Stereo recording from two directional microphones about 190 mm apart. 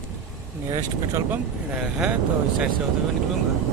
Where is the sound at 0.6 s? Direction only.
15° right (ahead or behind).